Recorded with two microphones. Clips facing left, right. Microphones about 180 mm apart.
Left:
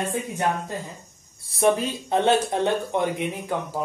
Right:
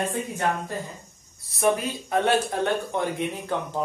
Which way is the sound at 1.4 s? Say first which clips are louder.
Left 2 dB; 30° left (ahead or behind).